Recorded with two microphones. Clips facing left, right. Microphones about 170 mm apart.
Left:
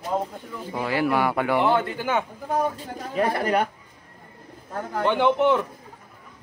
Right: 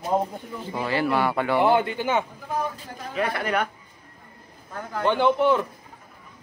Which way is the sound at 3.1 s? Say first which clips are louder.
Left 3 dB; 35° left (ahead or behind).